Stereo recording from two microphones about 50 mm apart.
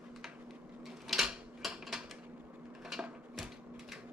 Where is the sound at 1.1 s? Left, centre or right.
Centre.